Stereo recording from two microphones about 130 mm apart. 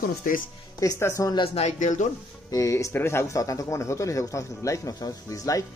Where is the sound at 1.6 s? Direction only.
65° left (ahead or behind).